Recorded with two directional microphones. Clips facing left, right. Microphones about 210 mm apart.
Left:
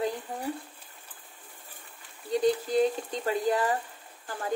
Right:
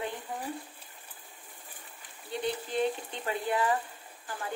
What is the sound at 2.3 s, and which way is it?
Speech, 40° left (ahead or behind).